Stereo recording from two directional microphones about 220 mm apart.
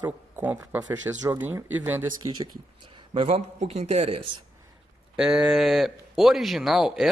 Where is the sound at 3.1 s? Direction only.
30° right (ahead or behind).